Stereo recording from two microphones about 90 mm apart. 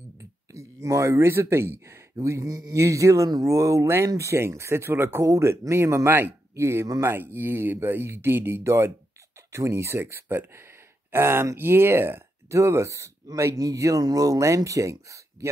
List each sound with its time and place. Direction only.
0.2 s speech: 35° right (ahead or behind)